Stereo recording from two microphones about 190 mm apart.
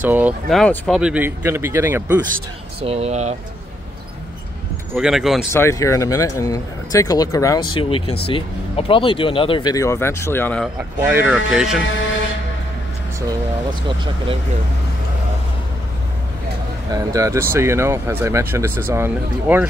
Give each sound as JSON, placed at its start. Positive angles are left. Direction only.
{"t": 0.0, "sound": "speech", "side_deg": -10}
{"t": 0.6, "sound": "speech", "side_deg": 0}
{"t": 2.8, "sound": "speech", "side_deg": -30}
{"t": 4.9, "sound": "speech", "side_deg": 0}
{"t": 5.5, "sound": "speech", "side_deg": 15}
{"t": 11.0, "sound": "speech", "side_deg": -10}
{"t": 16.9, "sound": "speech", "side_deg": -15}